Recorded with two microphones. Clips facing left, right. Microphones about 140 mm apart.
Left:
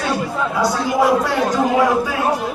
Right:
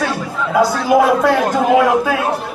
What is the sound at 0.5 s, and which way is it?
A man's voice, 60° right (ahead or behind).